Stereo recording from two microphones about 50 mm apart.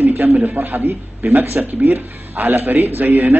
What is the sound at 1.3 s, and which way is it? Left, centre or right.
A man's voice, right.